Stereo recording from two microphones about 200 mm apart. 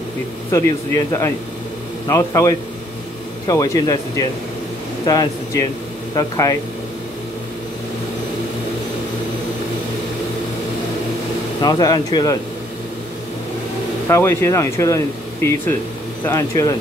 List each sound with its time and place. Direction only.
0.5 s speech: 15° left (ahead or behind)
5.0 s speech: 20° left (ahead or behind)
11.6 s speech: 20° left (ahead or behind)
14.0 s speech: 15° left (ahead or behind)
16.3 s speech: 15° left (ahead or behind)